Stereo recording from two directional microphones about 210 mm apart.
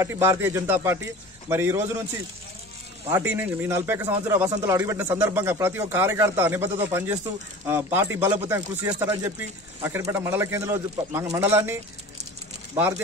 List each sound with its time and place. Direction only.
0.0 s a man's voice: 10° right (ahead or behind)
3.1 s a man's voice: 10° right (ahead or behind)